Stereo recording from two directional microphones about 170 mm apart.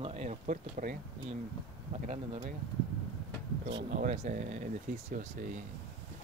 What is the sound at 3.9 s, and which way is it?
Speech, 45° right (ahead or behind).